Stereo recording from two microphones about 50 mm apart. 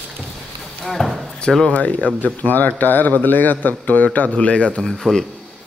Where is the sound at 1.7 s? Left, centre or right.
Left.